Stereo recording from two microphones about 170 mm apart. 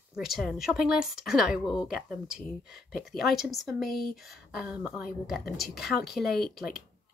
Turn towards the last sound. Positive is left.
turn(degrees=0)  # may be behind; listen again after turning